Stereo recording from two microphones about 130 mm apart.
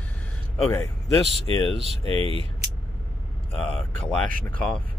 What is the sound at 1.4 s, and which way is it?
Speech, 45° right (ahead or behind).